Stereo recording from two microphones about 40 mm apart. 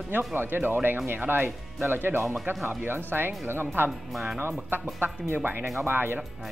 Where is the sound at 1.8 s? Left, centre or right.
Right.